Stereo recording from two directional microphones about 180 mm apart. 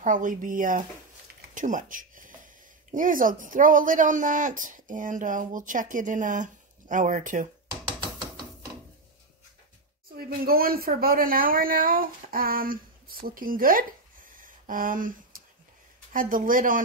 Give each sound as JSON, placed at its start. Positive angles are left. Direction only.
{"t": 0.0, "sound": "speech", "side_deg": -45}
{"t": 1.5, "sound": "a sound", "side_deg": -45}
{"t": 2.9, "sound": "speech", "side_deg": -50}
{"t": 10.1, "sound": "speech", "side_deg": -55}